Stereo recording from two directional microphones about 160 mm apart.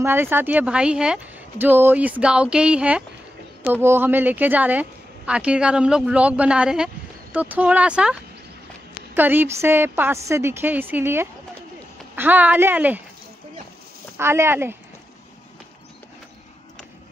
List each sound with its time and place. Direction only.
0.0 s speech: 15° right (ahead or behind)
14.1 s speech: 15° right (ahead or behind)